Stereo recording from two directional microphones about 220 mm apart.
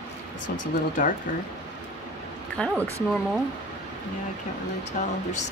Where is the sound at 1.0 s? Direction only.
35° left (ahead or behind).